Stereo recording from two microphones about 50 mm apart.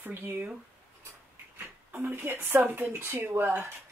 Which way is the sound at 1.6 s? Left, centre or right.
Right.